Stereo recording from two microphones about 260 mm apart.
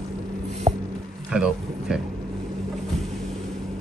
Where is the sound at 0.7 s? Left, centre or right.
Centre.